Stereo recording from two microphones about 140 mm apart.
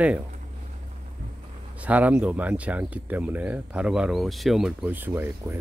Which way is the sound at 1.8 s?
10° right (ahead or behind).